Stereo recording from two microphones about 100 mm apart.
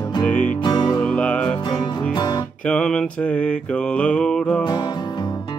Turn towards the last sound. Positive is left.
turn(degrees=5)  # may be behind; listen again after turning